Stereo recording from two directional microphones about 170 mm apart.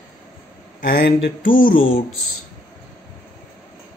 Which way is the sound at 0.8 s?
75° left (ahead or behind).